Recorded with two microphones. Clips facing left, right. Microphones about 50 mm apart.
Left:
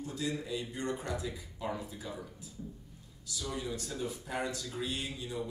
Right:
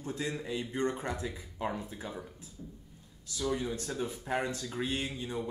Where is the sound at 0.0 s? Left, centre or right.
Right.